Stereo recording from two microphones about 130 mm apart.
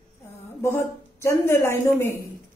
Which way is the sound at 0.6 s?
20° left (ahead or behind).